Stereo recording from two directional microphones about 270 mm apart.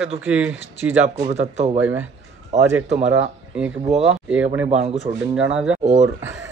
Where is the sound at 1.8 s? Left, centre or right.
Centre.